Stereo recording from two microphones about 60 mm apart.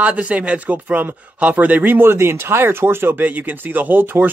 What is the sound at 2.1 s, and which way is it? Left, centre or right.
Speech, right.